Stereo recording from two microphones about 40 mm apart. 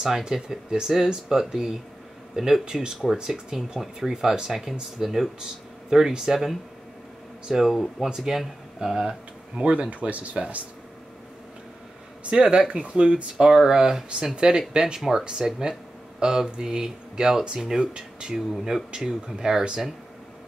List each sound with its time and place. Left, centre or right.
0.0 s speech: centre
9.6 s speech: right
12.3 s speech: right
13.4 s speech: centre
15.0 s speech: centre
15.2 s speech: centre